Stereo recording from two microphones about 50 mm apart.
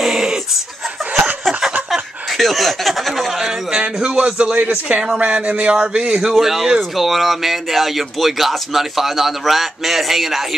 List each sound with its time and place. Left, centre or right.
0.0 s dog: centre
1.6 s snicker: centre
3.7 s speech: centre
6.3 s speech: centre